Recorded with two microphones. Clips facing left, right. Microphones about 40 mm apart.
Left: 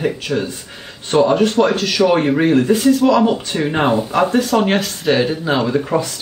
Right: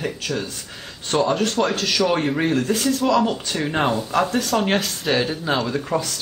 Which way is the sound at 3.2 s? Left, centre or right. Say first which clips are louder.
Left 5 dB; centre.